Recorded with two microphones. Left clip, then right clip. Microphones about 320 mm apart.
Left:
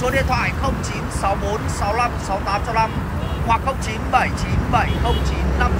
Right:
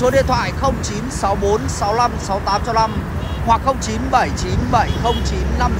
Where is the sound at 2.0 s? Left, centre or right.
Centre.